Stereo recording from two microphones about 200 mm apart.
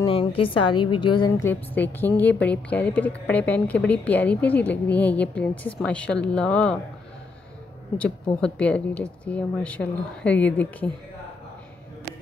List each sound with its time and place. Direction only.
0.0 s a woman's voice: 25° left (ahead or behind)
1.4 s a woman's voice: 10° left (ahead or behind)
8.0 s a woman's voice: 5° left (ahead or behind)